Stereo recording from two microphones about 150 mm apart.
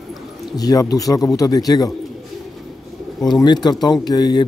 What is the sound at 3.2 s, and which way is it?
A man's voice, 25° left (ahead or behind).